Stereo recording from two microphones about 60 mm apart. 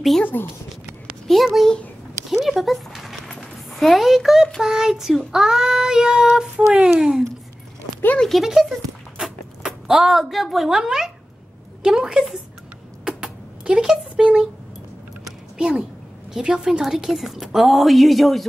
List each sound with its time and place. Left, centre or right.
0.2 s speech: left
1.2 s a woman's voice: centre
2.3 s a sound: centre
3.7 s a woman's voice: centre
4.6 s child singing: centre
8.2 s a woman's voice: centre
11.8 s child singing: centre
13.0 s a sound: centre
15.5 s a woman's voice: centre